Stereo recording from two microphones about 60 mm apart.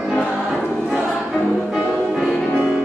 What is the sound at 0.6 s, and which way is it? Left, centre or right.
Choir, centre.